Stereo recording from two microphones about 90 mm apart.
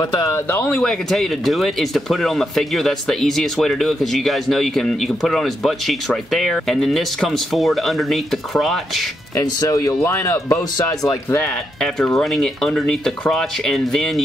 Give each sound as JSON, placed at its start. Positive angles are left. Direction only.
{"t": 0.0, "sound": "speech", "side_deg": 40}
{"t": 0.8, "sound": "speech", "side_deg": 0}
{"t": 9.4, "sound": "speech", "side_deg": 40}
{"t": 11.8, "sound": "speech", "side_deg": 5}